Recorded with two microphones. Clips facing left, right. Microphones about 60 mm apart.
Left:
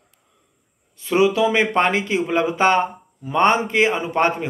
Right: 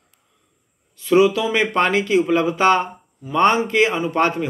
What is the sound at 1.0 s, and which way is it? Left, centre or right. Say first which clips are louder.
Speech: right 2 dB; left.